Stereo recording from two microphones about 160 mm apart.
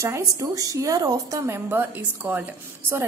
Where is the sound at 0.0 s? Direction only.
20° right (ahead or behind).